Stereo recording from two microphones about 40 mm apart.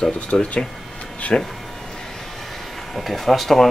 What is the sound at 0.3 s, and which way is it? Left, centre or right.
Speech, left.